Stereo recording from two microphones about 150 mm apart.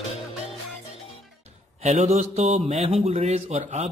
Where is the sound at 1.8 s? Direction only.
45° right (ahead or behind).